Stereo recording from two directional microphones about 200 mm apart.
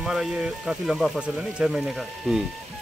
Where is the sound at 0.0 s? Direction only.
Centre (ahead or behind).